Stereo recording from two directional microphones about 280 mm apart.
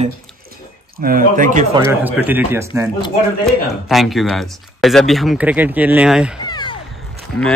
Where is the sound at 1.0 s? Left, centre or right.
Right.